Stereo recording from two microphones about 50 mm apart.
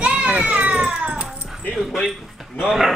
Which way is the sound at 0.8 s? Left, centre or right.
Centre.